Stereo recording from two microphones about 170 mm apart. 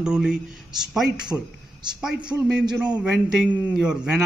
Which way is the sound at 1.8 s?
25° right (ahead or behind).